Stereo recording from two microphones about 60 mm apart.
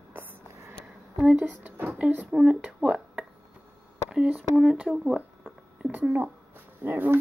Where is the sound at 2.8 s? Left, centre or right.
Centre.